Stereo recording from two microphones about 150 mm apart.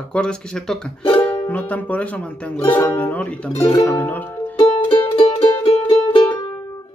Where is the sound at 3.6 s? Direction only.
20° left (ahead or behind).